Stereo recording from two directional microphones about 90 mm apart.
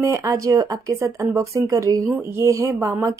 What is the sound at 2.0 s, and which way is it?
Speech, 25° right (ahead or behind).